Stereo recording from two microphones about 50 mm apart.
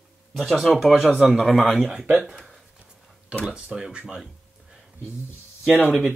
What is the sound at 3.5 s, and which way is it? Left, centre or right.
Speech, centre.